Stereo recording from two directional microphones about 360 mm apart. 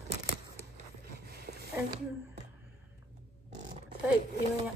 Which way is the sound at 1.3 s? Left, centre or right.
Right.